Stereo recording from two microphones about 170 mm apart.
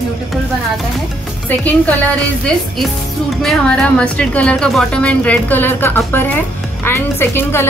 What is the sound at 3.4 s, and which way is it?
A woman's voice, 5° left (ahead or behind).